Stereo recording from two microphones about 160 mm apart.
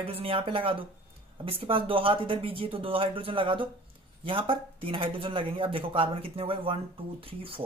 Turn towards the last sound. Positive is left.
turn(degrees=-35)  # may be behind; listen again after turning